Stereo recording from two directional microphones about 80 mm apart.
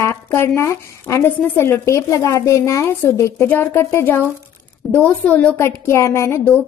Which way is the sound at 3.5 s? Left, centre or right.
Left.